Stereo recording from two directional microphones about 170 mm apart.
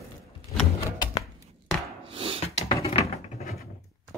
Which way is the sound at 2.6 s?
35° left (ahead or behind).